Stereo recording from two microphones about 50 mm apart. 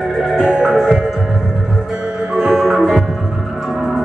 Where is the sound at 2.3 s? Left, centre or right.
Centre.